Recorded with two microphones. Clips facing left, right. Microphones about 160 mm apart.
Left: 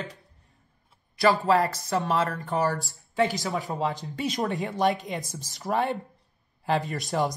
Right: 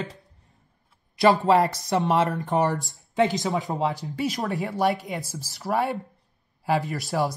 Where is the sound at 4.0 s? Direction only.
5° right (ahead or behind).